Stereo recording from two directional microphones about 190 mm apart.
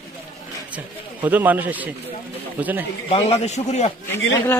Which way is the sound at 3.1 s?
35° left (ahead or behind).